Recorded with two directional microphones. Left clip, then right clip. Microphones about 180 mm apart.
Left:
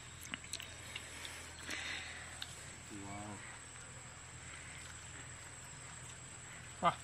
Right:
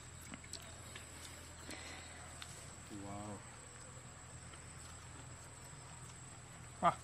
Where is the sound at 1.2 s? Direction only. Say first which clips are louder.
Left 5 dB; 5° right (ahead or behind).